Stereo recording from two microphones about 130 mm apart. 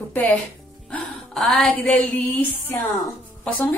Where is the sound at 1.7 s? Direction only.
10° left (ahead or behind).